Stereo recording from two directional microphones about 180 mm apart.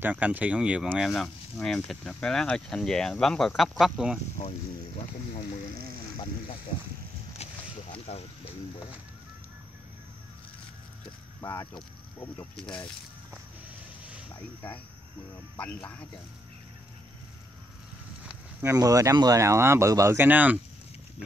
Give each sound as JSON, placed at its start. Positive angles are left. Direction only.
{"t": 0.0, "sound": "speech", "side_deg": -10}
{"t": 7.4, "sound": "boat", "side_deg": 35}
{"t": 7.9, "sound": "speech", "side_deg": 35}
{"t": 11.4, "sound": "speech", "side_deg": 15}
{"t": 15.5, "sound": "speech", "side_deg": 10}
{"t": 18.2, "sound": "speech", "side_deg": -15}